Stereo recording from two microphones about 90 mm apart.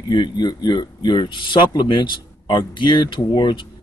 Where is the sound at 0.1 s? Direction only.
55° left (ahead or behind).